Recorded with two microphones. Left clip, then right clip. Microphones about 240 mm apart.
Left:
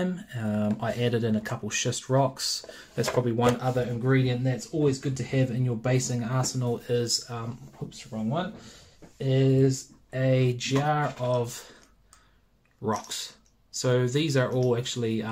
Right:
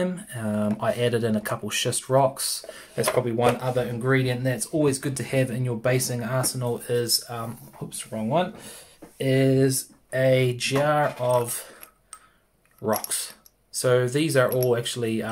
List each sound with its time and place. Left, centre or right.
0.0 s speech: centre
9.3 s speech: right; by 11.6 s centre
12.8 s speech: centre